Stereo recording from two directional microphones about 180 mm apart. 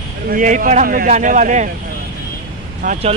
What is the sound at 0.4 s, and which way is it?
Speech, 45° right (ahead or behind).